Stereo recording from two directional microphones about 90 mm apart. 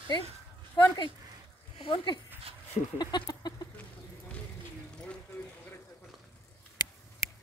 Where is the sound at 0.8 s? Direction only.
65° left (ahead or behind).